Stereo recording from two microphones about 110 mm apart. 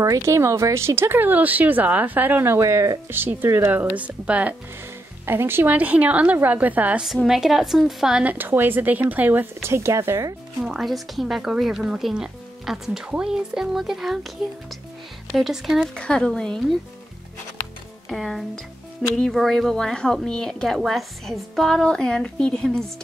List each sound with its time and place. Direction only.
0.0 s speech: 30° right (ahead or behind)
3.2 s a woman's voice: 20° right (ahead or behind)
7.2 s a woman's voice: 5° right (ahead or behind); by 10.3 s 25° right (ahead or behind)
10.6 s speech: 5° right (ahead or behind)
15.3 s speech: centre (ahead or behind)
18.0 s speech: centre (ahead or behind)